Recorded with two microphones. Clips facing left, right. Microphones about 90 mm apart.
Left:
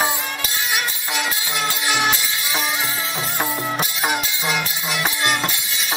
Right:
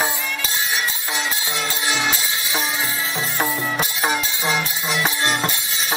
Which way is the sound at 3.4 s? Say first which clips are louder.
Right 1 dB; centre (ahead or behind).